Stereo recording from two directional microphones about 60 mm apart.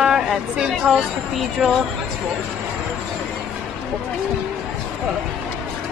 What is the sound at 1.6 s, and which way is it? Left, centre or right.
Speech, centre.